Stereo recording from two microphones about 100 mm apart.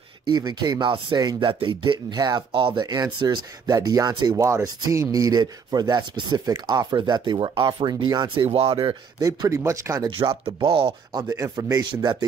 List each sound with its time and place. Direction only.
0.3 s speech: 45° right (ahead or behind)
2.1 s speech: 45° right (ahead or behind)
2.5 s speech: 55° right (ahead or behind)
8.5 s speech: 80° right
9.2 s rub: 35° right (ahead or behind)
10.0 s speech: 50° right (ahead or behind)
11.1 s rub: 35° right (ahead or behind)
11.8 s speech: 50° right (ahead or behind)